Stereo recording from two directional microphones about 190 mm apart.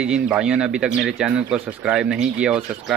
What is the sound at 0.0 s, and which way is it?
Speech, 5° right (ahead or behind).